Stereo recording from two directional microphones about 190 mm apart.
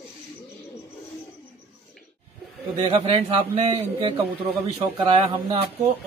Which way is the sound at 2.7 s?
30° right (ahead or behind).